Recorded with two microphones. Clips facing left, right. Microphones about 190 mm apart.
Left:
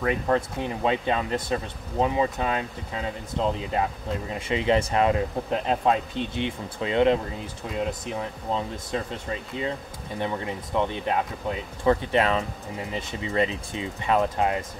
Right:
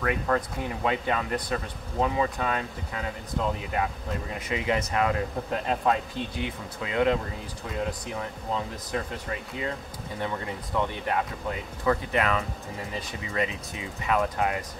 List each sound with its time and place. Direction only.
0.0 s speech: 25° left (ahead or behind)